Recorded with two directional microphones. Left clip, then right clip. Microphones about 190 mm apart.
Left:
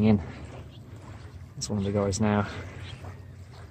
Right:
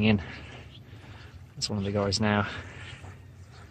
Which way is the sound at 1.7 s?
Centre (ahead or behind).